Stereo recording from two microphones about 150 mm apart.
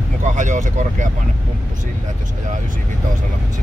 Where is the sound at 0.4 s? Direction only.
55° right (ahead or behind).